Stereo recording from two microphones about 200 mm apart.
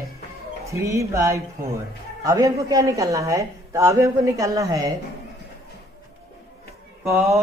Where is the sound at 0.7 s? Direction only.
15° right (ahead or behind).